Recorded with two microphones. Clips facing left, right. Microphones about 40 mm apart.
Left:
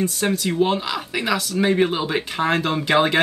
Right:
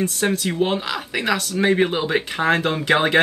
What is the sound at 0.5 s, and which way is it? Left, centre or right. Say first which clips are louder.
Speech: left 1 dB; centre.